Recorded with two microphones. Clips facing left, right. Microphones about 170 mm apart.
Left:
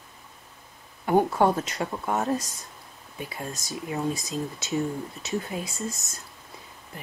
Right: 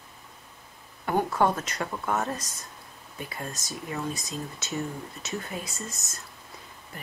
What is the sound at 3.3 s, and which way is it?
Speech, centre (ahead or behind).